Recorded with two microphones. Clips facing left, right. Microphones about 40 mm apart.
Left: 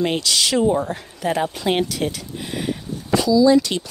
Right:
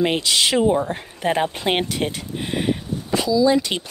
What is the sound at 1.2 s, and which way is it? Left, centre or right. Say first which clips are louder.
Speech: right 1 dB; right.